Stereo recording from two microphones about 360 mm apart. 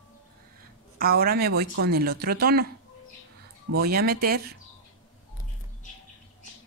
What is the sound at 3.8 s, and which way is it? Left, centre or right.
Speech, right.